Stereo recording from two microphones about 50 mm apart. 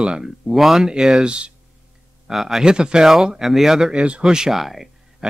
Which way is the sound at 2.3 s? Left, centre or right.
Centre.